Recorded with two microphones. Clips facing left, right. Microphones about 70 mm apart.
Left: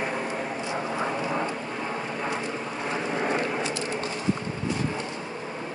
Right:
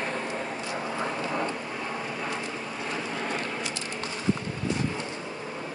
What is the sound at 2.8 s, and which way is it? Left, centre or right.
Vehicle, left.